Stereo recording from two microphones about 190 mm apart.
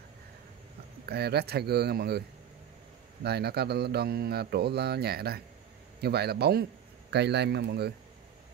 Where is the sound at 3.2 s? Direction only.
60° right (ahead or behind).